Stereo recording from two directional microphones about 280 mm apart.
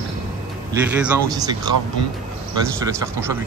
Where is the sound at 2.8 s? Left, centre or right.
Centre.